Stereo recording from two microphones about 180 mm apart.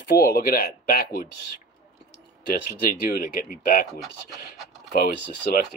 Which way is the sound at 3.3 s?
50° left (ahead or behind).